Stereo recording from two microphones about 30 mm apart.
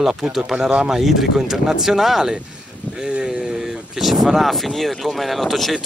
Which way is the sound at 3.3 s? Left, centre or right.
Centre.